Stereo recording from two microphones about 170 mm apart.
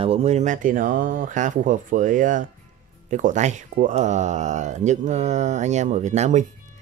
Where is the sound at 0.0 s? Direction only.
40° right (ahead or behind).